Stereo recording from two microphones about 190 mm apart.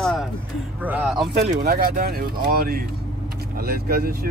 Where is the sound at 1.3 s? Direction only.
45° right (ahead or behind).